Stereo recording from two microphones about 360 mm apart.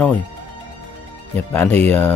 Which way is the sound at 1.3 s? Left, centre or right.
Centre.